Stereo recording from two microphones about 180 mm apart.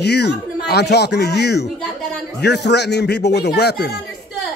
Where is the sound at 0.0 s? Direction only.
65° left (ahead or behind).